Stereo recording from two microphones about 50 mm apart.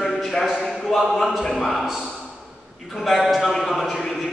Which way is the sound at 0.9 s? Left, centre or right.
Centre.